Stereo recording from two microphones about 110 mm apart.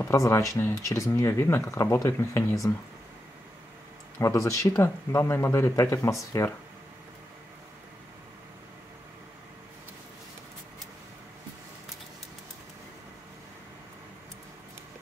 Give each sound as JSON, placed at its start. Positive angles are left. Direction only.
{"t": 0.0, "sound": "speech", "side_deg": 25}
{"t": 4.2, "sound": "speech", "side_deg": 30}